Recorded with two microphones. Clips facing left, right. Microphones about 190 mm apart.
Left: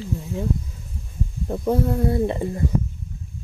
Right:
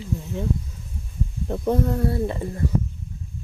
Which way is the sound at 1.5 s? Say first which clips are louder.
Left 1 dB; 5° left (ahead or behind).